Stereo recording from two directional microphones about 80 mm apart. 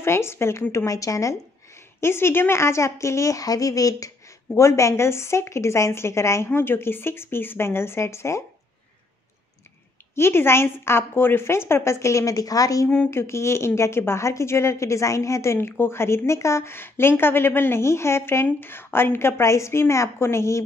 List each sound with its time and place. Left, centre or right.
0.0 s a woman's voice: left
2.0 s a woman's voice: left
10.1 s a woman's voice: left
12.9 s a woman's voice: left